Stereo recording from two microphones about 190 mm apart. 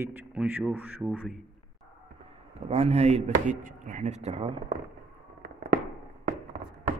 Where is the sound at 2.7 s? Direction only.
35° right (ahead or behind).